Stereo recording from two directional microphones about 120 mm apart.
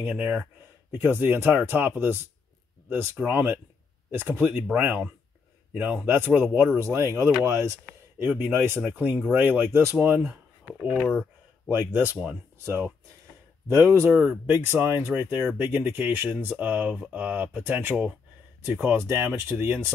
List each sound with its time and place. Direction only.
0.0 s speech: 15° right (ahead or behind)
8.2 s speech: 15° right (ahead or behind)
10.7 s speech: centre (ahead or behind)
11.1 s a sound: 10° left (ahead or behind)
11.7 s speech: 15° right (ahead or behind)
14.1 s speech: 10° right (ahead or behind)